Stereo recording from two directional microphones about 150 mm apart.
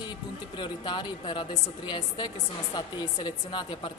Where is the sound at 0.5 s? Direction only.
35° left (ahead or behind).